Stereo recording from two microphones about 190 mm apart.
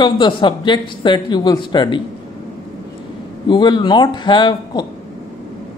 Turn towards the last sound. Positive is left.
turn(degrees=25)  # may be behind; listen again after turning